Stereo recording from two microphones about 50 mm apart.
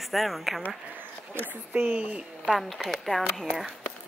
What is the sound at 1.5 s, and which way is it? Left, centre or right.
Speech, right.